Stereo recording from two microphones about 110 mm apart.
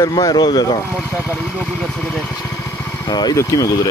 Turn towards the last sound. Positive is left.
turn(degrees=30)  # may be behind; listen again after turning